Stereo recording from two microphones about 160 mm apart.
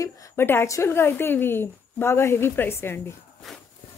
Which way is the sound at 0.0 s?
20° left (ahead or behind).